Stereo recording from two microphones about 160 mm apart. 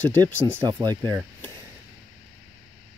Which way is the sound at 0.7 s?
25° right (ahead or behind).